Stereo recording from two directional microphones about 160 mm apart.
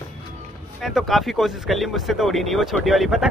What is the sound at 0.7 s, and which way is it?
Speech, centre (ahead or behind).